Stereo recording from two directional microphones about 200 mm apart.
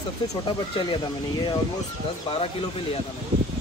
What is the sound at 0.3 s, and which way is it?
Speech, 25° left (ahead or behind).